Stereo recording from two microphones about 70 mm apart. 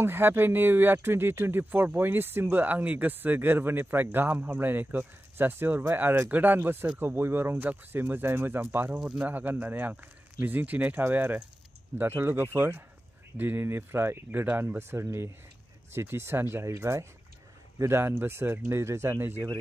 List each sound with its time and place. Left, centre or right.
0.0 s speech: right
8.9 s speech: centre
9.2 s speech: right